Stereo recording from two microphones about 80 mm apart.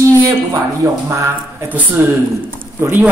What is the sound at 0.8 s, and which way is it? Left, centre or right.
Speech, right.